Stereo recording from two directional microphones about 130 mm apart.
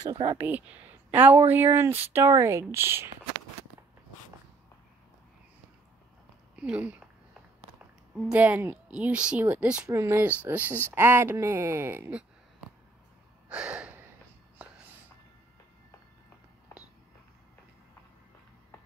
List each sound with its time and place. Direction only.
0.0 s speech: 35° right (ahead or behind)
0.4 s speech: 15° right (ahead or behind)
6.5 s a woman's voice: 10° right (ahead or behind)
9.8 s speech: 20° right (ahead or behind)
13.5 s gasp: 10° right (ahead or behind)